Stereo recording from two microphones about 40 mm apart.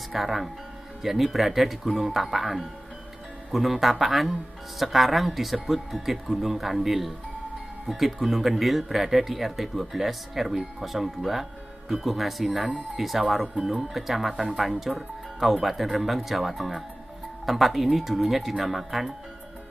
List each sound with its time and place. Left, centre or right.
0.1 s speech: centre
3.8 s speech: centre